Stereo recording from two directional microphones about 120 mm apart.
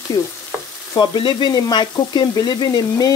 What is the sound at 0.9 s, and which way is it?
Frying, 40° left (ahead or behind).